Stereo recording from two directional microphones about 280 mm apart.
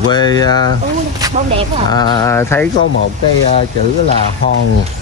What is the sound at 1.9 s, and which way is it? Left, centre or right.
Speech, centre.